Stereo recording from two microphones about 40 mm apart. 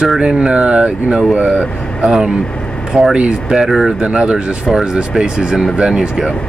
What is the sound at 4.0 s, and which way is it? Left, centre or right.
Speech, right.